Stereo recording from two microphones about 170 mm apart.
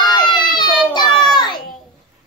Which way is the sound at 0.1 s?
25° left (ahead or behind).